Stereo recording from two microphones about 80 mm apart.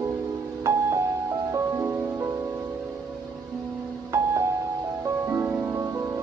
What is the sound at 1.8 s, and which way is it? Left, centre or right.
Music, right.